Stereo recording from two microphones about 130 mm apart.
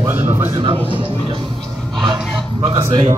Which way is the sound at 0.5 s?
40° right (ahead or behind).